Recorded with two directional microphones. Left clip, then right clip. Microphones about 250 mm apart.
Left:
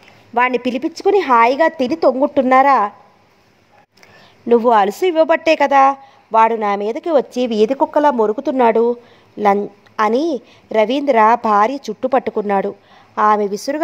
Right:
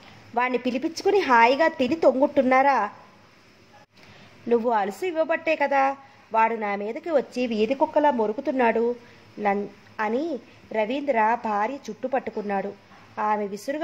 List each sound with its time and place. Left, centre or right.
0.3 s a woman's voice: left
4.5 s speech: left